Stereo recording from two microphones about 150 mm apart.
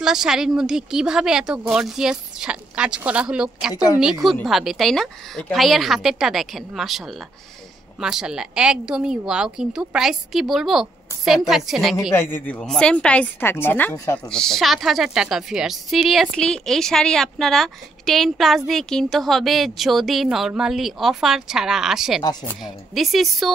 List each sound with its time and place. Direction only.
0.0 s a woman's voice: 5° right (ahead or behind)
3.7 s a woman's voice: 25° left (ahead or behind)
4.0 s a woman's voice: centre (ahead or behind)
12.1 s a woman's voice: 15° left (ahead or behind)
14.2 s a woman's voice: 5° left (ahead or behind)